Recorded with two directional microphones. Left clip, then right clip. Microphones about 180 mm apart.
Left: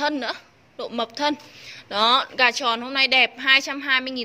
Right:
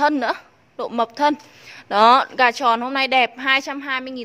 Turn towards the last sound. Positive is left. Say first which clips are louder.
# left 3 dB
turn(degrees=-15)  # may be behind; listen again after turning